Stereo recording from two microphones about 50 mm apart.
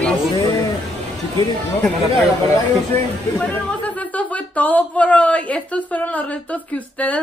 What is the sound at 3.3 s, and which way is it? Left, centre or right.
Speech, left.